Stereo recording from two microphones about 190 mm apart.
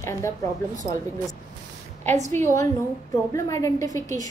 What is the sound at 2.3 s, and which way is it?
A woman's voice, 15° left (ahead or behind).